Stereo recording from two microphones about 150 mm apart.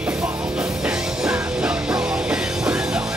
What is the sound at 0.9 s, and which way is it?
Music, 5° right (ahead or behind).